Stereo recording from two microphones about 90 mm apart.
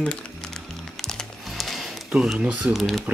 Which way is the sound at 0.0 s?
10° left (ahead or behind).